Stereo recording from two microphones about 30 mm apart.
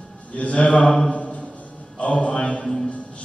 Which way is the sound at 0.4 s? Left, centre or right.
Left.